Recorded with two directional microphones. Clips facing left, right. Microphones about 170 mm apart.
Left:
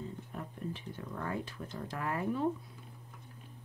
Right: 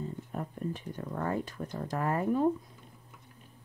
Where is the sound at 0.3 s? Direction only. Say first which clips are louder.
Right 7 dB; 45° right (ahead or behind).